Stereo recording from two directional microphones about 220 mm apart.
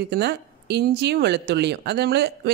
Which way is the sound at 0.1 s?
50° right (ahead or behind).